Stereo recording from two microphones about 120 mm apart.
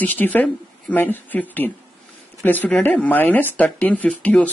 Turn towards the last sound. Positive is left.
turn(degrees=10)  # may be behind; listen again after turning